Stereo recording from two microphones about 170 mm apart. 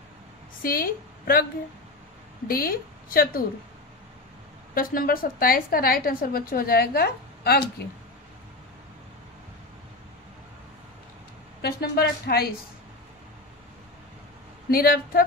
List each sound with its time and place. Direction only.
0.6 s a woman's voice: 60° left (ahead or behind)
2.4 s a woman's voice: 60° left (ahead or behind)
4.7 s a woman's voice: 60° left (ahead or behind)
11.6 s a woman's voice: 70° left (ahead or behind)
14.7 s a woman's voice: 60° left (ahead or behind)